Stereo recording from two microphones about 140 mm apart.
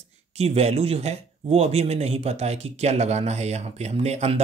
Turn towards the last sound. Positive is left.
turn(degrees=-50)  # may be behind; listen again after turning